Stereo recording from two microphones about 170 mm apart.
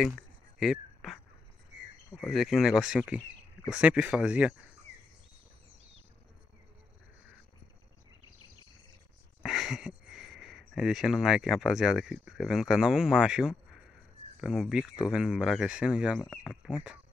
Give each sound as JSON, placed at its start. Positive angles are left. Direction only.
{"t": 0.6, "sound": "a sound", "side_deg": 0}
{"t": 2.3, "sound": "speech", "side_deg": 0}
{"t": 9.4, "sound": "speech", "side_deg": 0}